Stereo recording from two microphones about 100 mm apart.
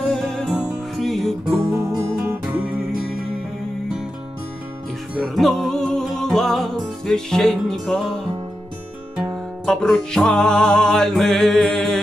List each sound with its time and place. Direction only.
0.0 s music: 5° left (ahead or behind)
1.7 s music: 35° right (ahead or behind)
5.2 s music: centre (ahead or behind)
9.3 s music: 5° left (ahead or behind)